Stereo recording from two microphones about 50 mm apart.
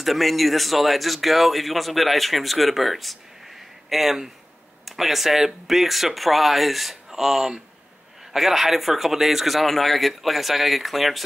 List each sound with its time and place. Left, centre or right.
0.0 s speech: centre